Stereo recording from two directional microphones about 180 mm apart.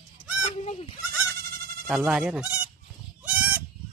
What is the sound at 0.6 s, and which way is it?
Goat, 40° left (ahead or behind).